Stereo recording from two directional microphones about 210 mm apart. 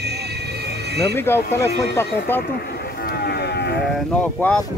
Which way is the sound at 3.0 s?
50° left (ahead or behind).